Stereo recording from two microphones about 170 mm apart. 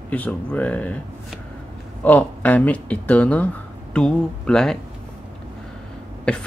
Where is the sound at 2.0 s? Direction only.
10° left (ahead or behind).